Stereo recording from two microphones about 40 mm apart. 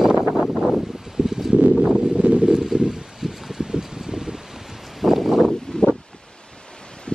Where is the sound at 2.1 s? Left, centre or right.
Right.